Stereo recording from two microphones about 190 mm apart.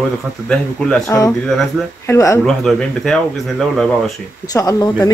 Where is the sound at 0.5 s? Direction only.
5° left (ahead or behind).